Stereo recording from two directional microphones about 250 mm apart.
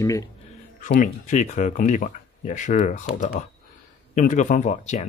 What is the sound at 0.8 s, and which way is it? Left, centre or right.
Speech, left.